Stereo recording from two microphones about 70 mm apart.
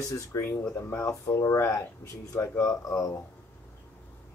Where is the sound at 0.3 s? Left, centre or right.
Left.